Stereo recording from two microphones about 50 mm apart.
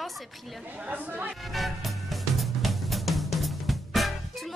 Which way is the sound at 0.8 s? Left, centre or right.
Right.